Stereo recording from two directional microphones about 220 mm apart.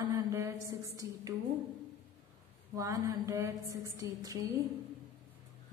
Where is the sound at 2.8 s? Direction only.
15° right (ahead or behind).